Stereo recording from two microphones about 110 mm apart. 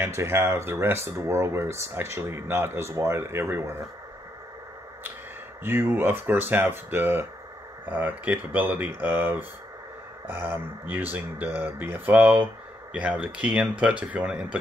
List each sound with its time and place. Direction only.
0.0 s speech: 25° right (ahead or behind)
5.6 s speech: 20° right (ahead or behind)